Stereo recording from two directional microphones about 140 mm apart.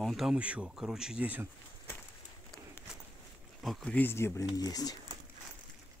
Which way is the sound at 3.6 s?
Centre (ahead or behind).